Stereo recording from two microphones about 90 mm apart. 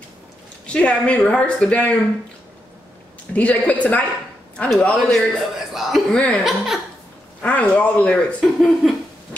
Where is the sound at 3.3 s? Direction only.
15° left (ahead or behind); by 6.0 s 5° right (ahead or behind).